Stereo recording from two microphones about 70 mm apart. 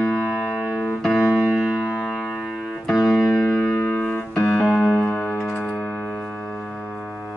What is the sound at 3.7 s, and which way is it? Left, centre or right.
Music, left.